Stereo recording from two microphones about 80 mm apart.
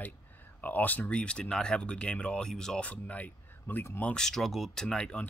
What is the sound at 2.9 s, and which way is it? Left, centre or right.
Speech, centre.